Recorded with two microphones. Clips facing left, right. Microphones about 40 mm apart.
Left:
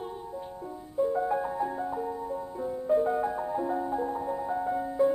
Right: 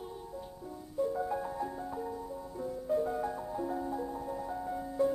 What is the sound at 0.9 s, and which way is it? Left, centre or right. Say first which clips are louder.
Music: left 6 dB; left.